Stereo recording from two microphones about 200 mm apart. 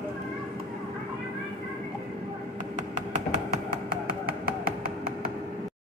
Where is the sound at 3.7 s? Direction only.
45° right (ahead or behind).